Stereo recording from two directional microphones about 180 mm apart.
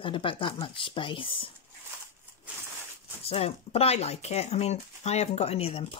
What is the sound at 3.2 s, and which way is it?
Speech, 35° left (ahead or behind).